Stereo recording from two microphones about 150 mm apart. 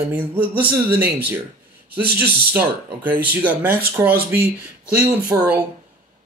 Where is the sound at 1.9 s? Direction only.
90° right.